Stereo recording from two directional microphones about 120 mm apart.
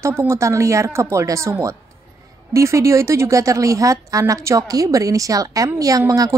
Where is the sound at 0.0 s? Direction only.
20° right (ahead or behind).